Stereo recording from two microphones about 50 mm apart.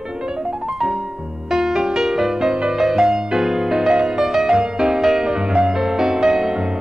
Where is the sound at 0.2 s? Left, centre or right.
Centre.